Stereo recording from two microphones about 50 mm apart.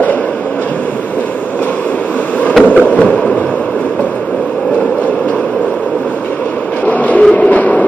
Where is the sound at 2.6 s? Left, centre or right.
Left.